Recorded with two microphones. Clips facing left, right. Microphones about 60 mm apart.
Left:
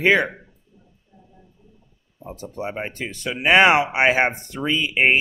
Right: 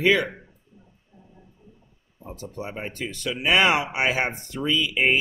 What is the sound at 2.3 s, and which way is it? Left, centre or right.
Speech, left.